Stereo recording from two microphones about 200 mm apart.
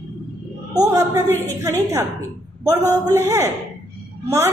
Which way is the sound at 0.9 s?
10° right (ahead or behind).